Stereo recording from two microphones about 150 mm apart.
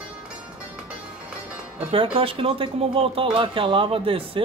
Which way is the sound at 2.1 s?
40° right (ahead or behind).